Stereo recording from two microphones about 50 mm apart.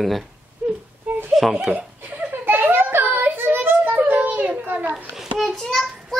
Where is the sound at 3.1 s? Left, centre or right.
Right.